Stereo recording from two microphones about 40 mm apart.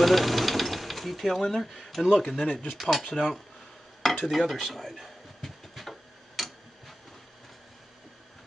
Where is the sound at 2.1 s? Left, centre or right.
Centre.